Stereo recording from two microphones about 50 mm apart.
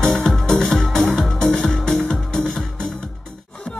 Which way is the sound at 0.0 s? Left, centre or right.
Centre.